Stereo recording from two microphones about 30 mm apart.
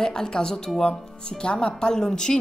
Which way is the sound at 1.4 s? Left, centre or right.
Left.